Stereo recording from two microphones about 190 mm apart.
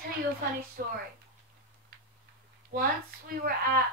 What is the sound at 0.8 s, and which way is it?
Speech, 50° right (ahead or behind).